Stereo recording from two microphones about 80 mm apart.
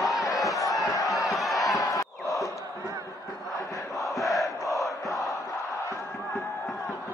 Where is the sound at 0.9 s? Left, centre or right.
Left.